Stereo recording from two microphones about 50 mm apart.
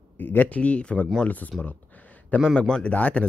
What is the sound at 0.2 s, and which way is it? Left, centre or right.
Speech, left.